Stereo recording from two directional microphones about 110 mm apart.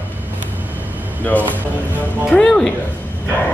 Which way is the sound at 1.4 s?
15° right (ahead or behind).